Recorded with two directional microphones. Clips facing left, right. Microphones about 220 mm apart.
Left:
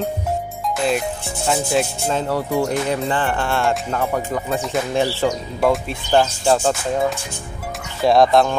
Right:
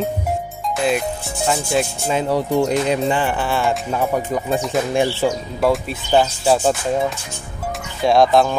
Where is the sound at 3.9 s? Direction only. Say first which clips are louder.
Right 2 dB; 15° right (ahead or behind).